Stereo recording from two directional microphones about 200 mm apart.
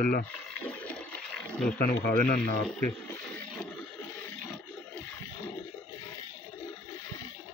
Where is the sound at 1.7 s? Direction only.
45° left (ahead or behind).